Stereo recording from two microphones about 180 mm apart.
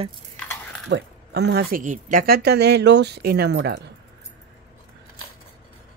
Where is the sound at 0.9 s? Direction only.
70° right (ahead or behind).